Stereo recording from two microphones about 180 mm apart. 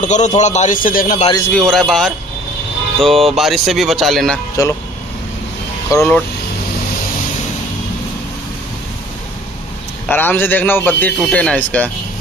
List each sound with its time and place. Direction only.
0.0 s a man's voice: 40° left (ahead or behind)
1.5 s speech: centre (ahead or behind)
4.6 s speech: 20° left (ahead or behind)
5.9 s speech: 5° left (ahead or behind)
10.0 s a man's voice: 10° left (ahead or behind)